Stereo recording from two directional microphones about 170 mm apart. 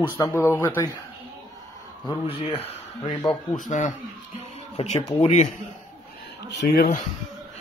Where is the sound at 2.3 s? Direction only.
35° left (ahead or behind).